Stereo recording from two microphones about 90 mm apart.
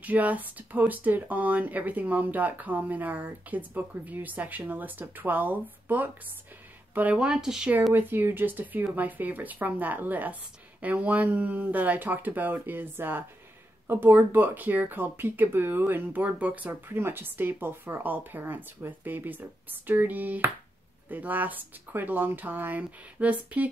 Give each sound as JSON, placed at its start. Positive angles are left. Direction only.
{"t": 0.0, "sound": "speech", "side_deg": -15}
{"t": 7.9, "sound": "speech", "side_deg": -20}